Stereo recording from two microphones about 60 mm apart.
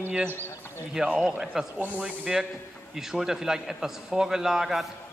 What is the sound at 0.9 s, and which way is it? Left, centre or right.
A man's voice, centre.